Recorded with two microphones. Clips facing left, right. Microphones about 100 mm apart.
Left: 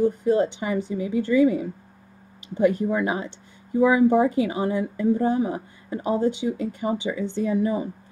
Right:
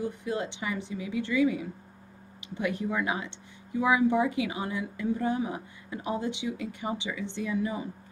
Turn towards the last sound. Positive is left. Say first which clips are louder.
# left 8 dB
turn(degrees=35)  # may be behind; listen again after turning